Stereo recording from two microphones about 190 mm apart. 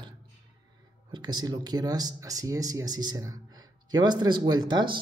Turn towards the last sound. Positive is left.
turn(degrees=-25)  # may be behind; listen again after turning